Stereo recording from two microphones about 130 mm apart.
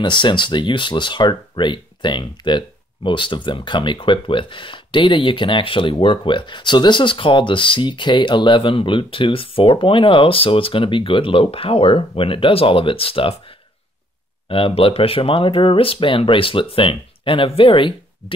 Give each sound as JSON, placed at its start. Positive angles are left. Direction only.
{"t": 0.0, "sound": "speech", "side_deg": 35}
{"t": 14.5, "sound": "speech", "side_deg": 45}